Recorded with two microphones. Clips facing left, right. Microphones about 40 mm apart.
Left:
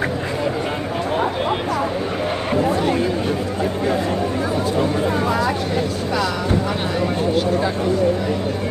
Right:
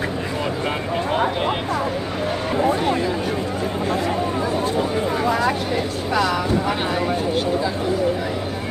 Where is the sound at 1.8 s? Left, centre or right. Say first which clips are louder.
Left 2 dB; left.